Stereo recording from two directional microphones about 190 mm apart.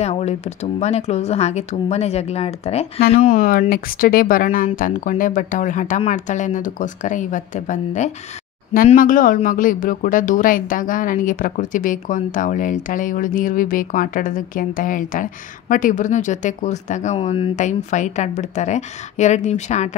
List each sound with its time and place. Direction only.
0.0 s speech: 35° left (ahead or behind)
3.3 s speech: 45° left (ahead or behind)